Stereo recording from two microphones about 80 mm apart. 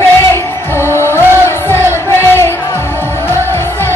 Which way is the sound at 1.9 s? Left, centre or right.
Left.